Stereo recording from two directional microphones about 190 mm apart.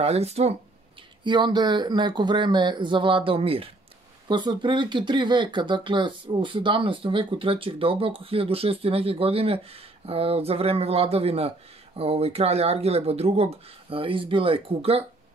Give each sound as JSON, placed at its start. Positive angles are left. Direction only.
{"t": 0.0, "sound": "speech", "side_deg": -35}